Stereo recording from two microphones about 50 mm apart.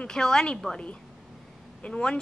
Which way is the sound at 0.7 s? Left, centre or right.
Left.